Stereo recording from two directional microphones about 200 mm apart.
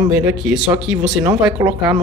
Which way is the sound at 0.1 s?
5° right (ahead or behind).